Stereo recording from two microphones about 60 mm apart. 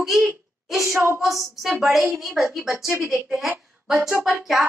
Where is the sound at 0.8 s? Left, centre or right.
Right.